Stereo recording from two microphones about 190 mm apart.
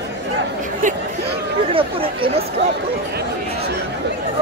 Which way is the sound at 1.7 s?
30° right (ahead or behind).